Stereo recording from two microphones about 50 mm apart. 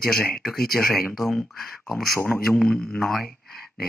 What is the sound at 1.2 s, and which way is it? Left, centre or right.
Speech, left.